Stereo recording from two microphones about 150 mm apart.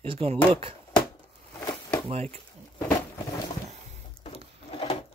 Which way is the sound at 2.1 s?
45° right (ahead or behind).